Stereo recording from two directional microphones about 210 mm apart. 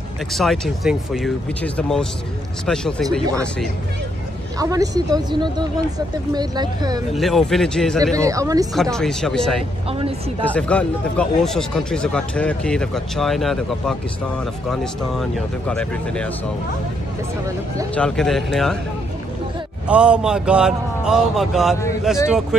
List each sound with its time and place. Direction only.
0.3 s speech: centre (ahead or behind)
4.6 s speech: 15° right (ahead or behind)
7.1 s speech: centre (ahead or behind)
8.2 s speech: 15° right (ahead or behind)
8.9 s speech: centre (ahead or behind)
9.8 s speech: 25° right (ahead or behind)
10.4 s speech: 5° left (ahead or behind)
17.9 s speech: 5° left (ahead or behind)
19.9 s speech: 5° right (ahead or behind)